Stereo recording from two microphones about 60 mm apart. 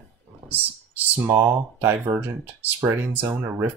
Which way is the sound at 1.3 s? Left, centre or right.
Right.